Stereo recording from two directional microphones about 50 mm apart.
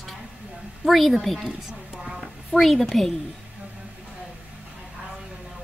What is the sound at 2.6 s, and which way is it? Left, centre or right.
Speech, centre.